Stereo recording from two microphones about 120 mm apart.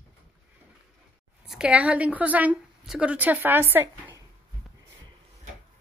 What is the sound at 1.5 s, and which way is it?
A woman's voice, 5° right (ahead or behind).